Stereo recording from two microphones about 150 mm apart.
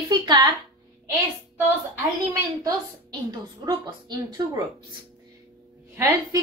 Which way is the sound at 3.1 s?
30° right (ahead or behind).